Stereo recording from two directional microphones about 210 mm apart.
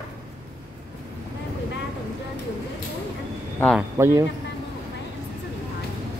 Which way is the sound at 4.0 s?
10° right (ahead or behind).